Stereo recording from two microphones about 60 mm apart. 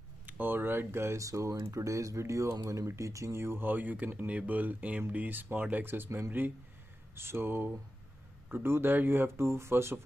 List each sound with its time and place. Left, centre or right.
0.3 s speech: right
1.2 s speech: right